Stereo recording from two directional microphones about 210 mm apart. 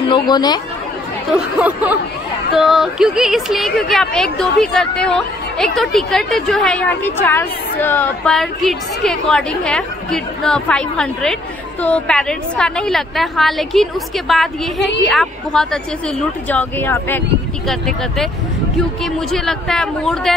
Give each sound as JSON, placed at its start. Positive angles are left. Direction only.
{"t": 0.1, "sound": "speech", "side_deg": 20}
{"t": 1.3, "sound": "speech", "side_deg": -5}